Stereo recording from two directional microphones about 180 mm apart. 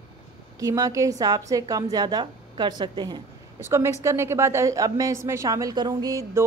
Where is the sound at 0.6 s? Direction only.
20° right (ahead or behind).